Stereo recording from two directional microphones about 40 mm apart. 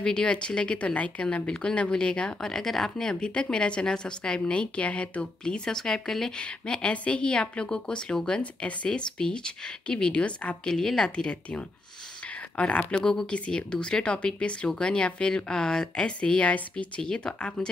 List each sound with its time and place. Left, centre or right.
0.0 s a woman's voice: left
2.4 s a woman's voice: centre
4.4 s speech: left
5.4 s a woman's voice: centre
6.3 s a woman's voice: left
10.6 s a woman's voice: centre
12.5 s a woman's voice: left